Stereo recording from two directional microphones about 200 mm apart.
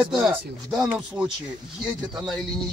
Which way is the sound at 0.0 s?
5° right (ahead or behind).